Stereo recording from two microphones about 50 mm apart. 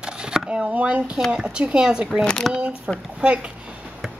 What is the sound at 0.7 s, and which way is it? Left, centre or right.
A woman's voice, right.